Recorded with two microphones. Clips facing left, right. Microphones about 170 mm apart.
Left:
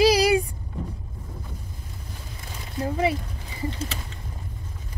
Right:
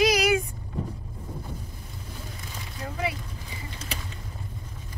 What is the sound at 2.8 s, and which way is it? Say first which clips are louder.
Speech: left 7 dB; 30° left (ahead or behind).